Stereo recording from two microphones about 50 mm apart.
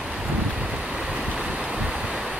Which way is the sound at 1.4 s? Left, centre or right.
Right.